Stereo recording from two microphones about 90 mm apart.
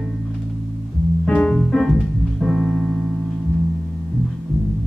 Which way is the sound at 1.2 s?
5° left (ahead or behind).